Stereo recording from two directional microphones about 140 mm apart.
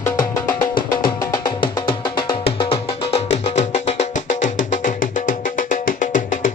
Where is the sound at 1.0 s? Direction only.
35° left (ahead or behind).